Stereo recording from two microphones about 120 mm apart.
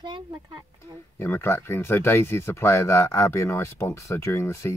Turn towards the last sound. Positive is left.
turn(degrees=20)  # may be behind; listen again after turning